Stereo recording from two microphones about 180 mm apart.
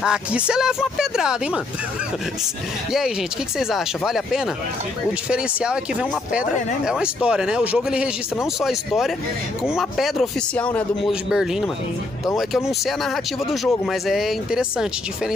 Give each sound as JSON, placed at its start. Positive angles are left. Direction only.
{"t": 0.0, "sound": "speech", "side_deg": -5}
{"t": 3.5, "sound": "speech", "side_deg": 0}